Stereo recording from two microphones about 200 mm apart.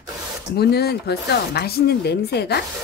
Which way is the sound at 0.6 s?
50° left (ahead or behind).